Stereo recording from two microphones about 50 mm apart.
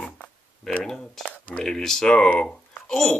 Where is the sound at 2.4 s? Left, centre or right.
Centre.